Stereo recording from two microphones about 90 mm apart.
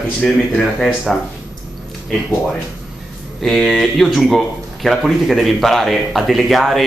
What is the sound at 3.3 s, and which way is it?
Speech, 5° left (ahead or behind).